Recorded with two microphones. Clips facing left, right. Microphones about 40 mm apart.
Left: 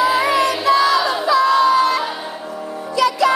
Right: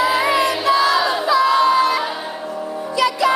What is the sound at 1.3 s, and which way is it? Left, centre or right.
Crowd, centre.